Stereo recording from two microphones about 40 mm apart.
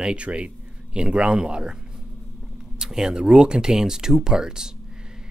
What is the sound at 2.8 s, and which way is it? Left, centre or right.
Speech, centre.